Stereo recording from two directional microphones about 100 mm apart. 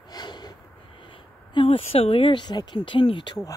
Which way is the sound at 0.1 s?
45° left (ahead or behind).